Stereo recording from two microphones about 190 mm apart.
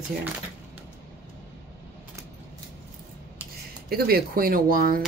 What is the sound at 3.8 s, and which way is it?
Speech, 55° right (ahead or behind).